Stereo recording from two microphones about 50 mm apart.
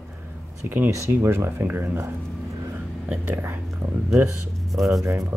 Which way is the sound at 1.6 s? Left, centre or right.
Right.